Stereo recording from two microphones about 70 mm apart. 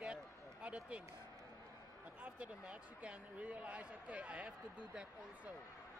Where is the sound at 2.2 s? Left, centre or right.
Centre.